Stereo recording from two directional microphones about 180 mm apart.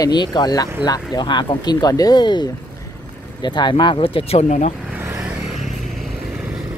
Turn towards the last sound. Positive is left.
turn(degrees=0)  # may be behind; listen again after turning